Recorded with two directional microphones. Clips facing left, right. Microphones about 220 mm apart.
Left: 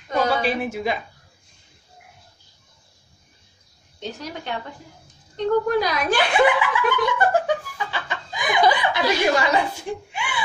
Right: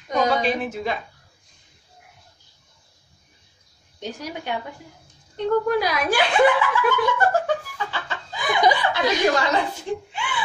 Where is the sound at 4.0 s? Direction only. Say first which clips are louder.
Right 1 dB; 10° right (ahead or behind).